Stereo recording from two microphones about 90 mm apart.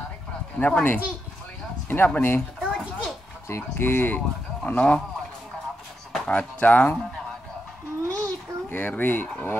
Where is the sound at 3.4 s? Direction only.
25° left (ahead or behind).